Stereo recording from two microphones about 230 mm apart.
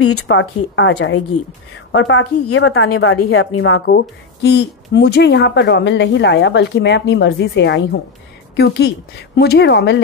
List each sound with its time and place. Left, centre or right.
0.0 s a woman's voice: left
2.4 s a woman's voice: left
3.8 s speech: left